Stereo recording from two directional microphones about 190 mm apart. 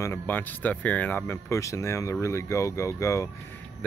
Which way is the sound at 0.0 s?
10° left (ahead or behind).